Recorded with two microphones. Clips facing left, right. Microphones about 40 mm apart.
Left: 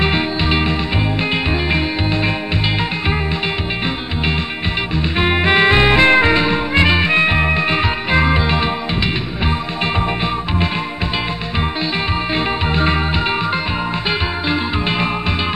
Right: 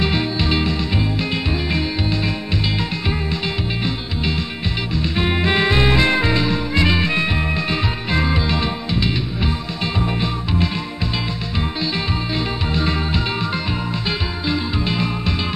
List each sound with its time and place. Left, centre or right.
0.0 s music: left
4.9 s music: left
12.4 s music: left
14.5 s music: left